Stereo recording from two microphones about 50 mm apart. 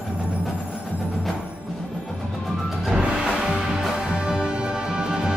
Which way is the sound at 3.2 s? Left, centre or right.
Centre.